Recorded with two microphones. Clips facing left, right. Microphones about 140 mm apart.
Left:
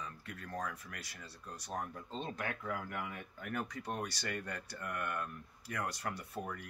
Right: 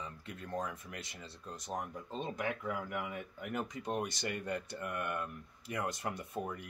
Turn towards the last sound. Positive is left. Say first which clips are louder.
# right 3 dB
turn(degrees=-20)  # may be behind; listen again after turning